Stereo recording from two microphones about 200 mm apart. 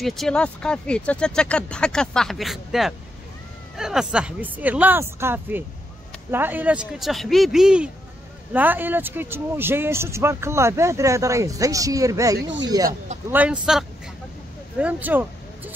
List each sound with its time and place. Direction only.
0.0 s speech: centre (ahead or behind); by 12.9 s 20° right (ahead or behind)
13.3 s speech: 5° right (ahead or behind)